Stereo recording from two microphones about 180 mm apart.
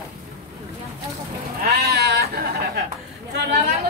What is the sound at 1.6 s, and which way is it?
Sheep, 65° right (ahead or behind).